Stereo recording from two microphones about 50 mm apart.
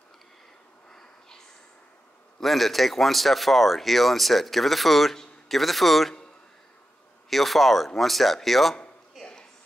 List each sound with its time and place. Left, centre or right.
0.8 s a sound: centre
2.4 s speech: centre
7.2 s speech: centre